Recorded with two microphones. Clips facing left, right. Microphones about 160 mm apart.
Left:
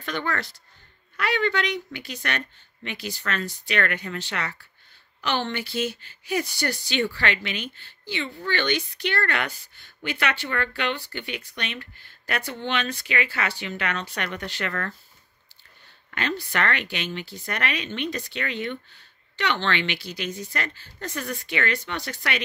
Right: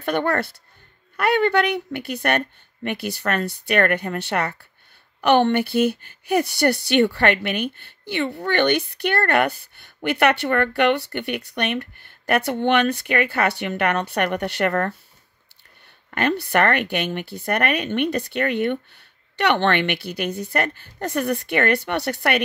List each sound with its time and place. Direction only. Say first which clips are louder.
0.0 s a woman's voice: right 8 dB; 55° right (ahead or behind)
16.2 s a woman's voice: right 7 dB; 60° right (ahead or behind)